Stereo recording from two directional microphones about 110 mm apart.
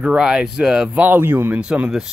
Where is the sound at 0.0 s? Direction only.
5° right (ahead or behind).